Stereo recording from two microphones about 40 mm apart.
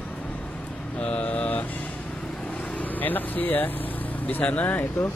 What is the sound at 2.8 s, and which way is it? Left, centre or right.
Speech, left.